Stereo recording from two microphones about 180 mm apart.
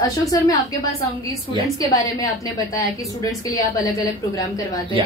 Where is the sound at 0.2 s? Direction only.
20° left (ahead or behind).